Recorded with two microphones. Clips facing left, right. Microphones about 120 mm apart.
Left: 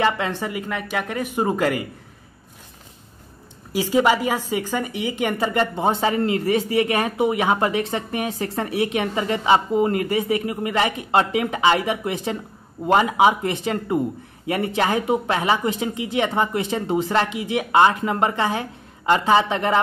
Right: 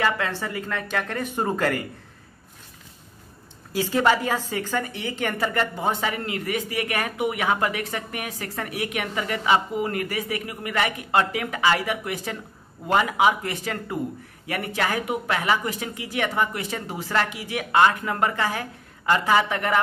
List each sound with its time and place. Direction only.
0.0 s speech: 20° left (ahead or behind)
3.7 s speech: 15° left (ahead or behind)